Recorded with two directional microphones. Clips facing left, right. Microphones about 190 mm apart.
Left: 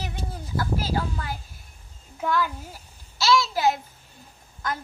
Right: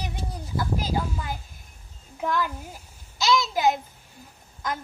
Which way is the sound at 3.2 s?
20° right (ahead or behind).